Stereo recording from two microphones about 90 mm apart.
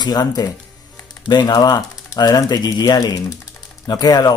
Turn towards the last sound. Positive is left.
turn(degrees=50)  # may be behind; listen again after turning